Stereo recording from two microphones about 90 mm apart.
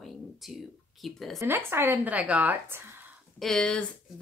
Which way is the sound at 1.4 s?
25° right (ahead or behind).